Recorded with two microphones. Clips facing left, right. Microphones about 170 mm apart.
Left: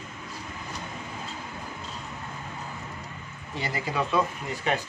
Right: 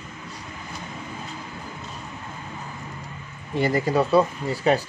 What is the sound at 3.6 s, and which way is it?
Speech, 45° right (ahead or behind).